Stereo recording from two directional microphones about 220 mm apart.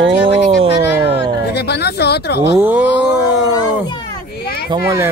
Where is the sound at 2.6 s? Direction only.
10° right (ahead or behind).